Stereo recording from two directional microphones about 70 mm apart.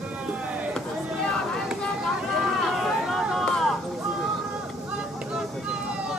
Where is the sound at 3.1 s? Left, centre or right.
Centre.